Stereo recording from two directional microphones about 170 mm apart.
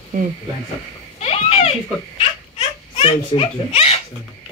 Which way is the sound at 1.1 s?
40° left (ahead or behind).